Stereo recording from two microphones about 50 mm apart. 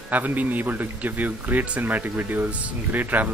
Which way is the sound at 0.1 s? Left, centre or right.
Right.